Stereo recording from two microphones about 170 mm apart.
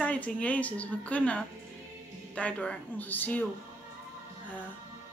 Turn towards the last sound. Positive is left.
turn(degrees=10)  # may be behind; listen again after turning